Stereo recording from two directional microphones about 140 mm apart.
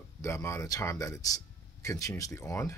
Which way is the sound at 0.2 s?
20° left (ahead or behind).